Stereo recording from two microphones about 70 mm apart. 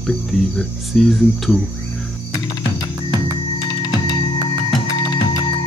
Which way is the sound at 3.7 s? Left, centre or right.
Left.